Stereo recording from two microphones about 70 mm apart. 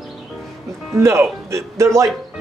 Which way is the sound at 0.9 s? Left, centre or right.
Right.